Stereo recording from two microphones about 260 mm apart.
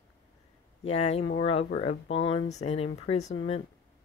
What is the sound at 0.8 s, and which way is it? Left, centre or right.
Speech, left.